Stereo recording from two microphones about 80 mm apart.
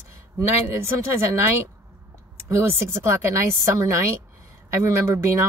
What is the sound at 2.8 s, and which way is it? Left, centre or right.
Speech, right.